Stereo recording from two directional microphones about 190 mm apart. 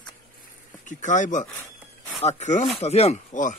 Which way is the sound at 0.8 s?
40° left (ahead or behind).